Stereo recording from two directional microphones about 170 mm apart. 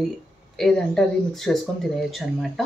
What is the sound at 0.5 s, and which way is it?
Speech, centre (ahead or behind).